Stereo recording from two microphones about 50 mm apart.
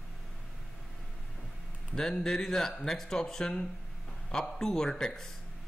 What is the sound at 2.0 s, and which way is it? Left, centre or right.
A man's voice, centre.